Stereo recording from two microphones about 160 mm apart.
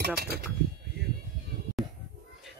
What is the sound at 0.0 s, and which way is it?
Speech, 75° right (ahead or behind).